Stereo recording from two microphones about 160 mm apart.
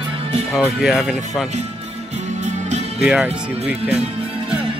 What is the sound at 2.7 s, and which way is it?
Music, 45° right (ahead or behind).